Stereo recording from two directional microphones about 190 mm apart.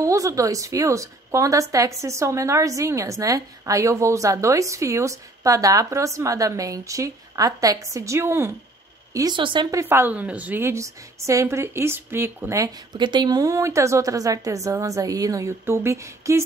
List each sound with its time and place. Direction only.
0.0 s speech: 15° right (ahead or behind)